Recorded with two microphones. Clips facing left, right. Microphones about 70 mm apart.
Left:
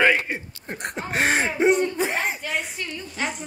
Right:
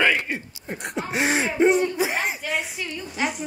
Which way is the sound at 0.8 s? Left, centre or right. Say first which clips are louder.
Left 1 dB; left.